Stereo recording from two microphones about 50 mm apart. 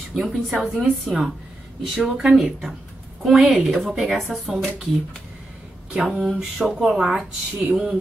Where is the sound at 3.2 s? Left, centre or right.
Centre.